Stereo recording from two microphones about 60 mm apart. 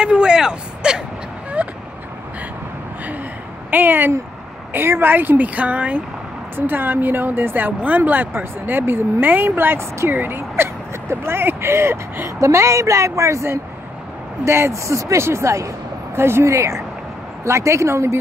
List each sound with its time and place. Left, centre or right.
0.0 s vehicle: centre
1.6 s vehicle: right
3.7 s speech: right
6.5 s speech: right
12.4 s speech: right
16.2 s a woman's voice: right